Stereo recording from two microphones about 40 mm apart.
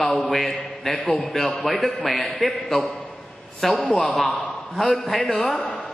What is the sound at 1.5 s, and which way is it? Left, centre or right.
Speech, centre.